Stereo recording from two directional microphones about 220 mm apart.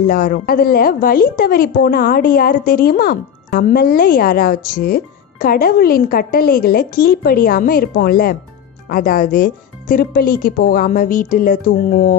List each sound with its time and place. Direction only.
0.0 s a woman's voice: 40° left (ahead or behind)